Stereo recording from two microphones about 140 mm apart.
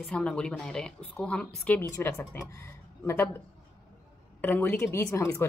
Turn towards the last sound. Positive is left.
turn(degrees=20)  # may be behind; listen again after turning